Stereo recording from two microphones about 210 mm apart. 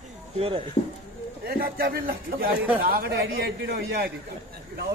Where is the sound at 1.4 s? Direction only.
45° right (ahead or behind).